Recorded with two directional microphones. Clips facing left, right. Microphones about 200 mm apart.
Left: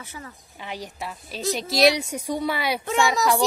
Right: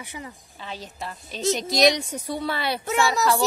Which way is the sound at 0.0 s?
15° right (ahead or behind).